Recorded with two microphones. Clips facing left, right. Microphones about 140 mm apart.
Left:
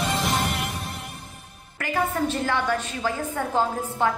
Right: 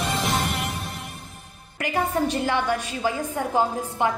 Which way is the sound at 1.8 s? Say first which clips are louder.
Right 1 dB; 15° right (ahead or behind).